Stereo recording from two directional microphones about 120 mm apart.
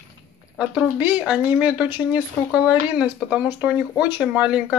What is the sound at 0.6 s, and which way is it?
Speech, 10° right (ahead or behind).